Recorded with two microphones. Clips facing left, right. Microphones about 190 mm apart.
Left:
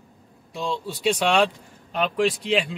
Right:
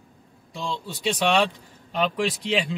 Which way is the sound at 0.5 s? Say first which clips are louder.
Left 3 dB; 10° left (ahead or behind).